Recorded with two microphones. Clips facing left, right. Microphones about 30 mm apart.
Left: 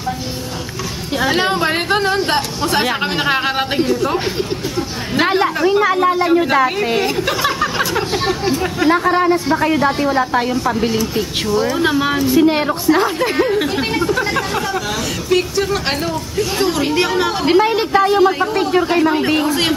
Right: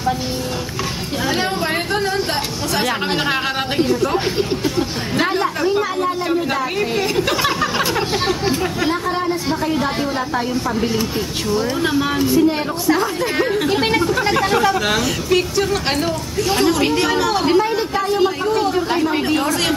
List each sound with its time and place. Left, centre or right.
1.2 s a sound: left
2.2 s speech: left
2.9 s speech: centre
5.7 s speech: left
7.2 s a sound: centre
7.9 s speech: centre
8.9 s speech: left
9.8 s speech: centre
12.4 s speech: left
15.2 s speech: centre
17.5 s speech: left
18.4 s speech: left